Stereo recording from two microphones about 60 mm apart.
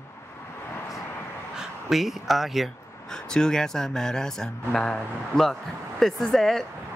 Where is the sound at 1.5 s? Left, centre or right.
Centre.